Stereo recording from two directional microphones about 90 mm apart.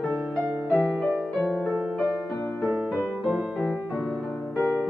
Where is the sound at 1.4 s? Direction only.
Centre (ahead or behind).